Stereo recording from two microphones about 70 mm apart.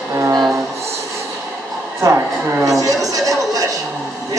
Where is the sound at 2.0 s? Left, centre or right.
Right.